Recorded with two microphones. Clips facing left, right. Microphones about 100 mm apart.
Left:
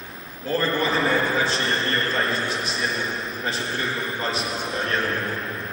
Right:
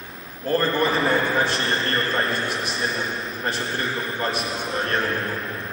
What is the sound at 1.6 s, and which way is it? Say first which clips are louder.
Speech: even; centre (ahead or behind).